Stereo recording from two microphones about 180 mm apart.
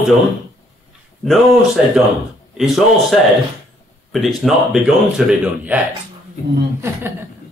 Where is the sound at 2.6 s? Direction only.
Centre (ahead or behind).